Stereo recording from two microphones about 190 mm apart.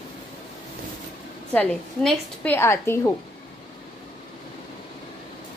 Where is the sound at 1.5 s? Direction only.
5° left (ahead or behind).